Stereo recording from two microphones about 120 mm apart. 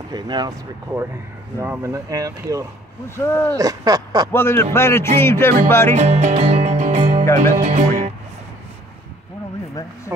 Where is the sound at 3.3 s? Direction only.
20° left (ahead or behind).